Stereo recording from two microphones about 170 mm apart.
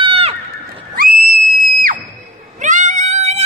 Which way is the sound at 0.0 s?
35° right (ahead or behind).